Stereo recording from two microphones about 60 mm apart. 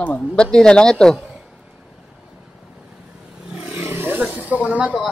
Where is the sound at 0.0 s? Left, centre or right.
Left.